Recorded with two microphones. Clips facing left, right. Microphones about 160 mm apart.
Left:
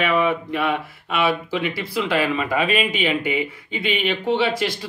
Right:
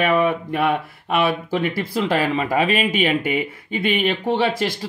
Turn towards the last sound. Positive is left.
turn(degrees=-45)  # may be behind; listen again after turning